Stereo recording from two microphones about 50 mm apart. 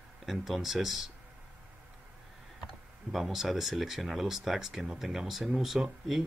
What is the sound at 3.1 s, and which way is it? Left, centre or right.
Speech, centre.